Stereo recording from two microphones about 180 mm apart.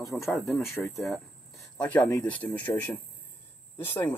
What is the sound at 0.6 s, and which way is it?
Speech, 15° left (ahead or behind).